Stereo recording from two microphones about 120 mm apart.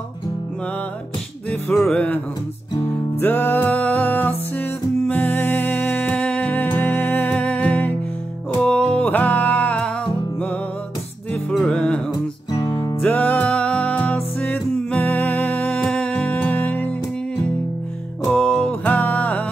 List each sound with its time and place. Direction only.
1.5 s music: 10° left (ahead or behind)
11.5 s music: 5° left (ahead or behind)
12.1 s music: 35° left (ahead or behind)
13.0 s music: 15° left (ahead or behind)
18.3 s music: 5° left (ahead or behind)